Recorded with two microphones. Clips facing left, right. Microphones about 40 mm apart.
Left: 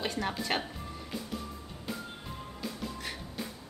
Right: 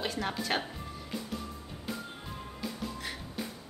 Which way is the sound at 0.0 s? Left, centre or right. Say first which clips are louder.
Even; centre.